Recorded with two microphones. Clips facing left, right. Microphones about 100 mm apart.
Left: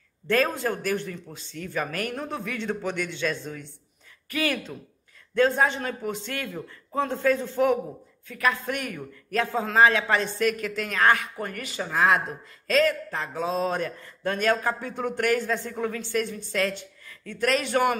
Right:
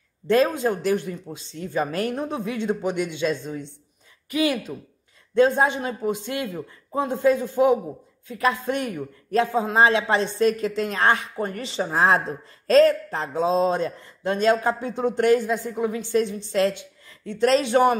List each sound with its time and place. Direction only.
0.3 s a man's voice: 20° right (ahead or behind)